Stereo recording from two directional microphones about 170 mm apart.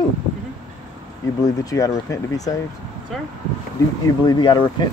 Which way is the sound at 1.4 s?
20° left (ahead or behind).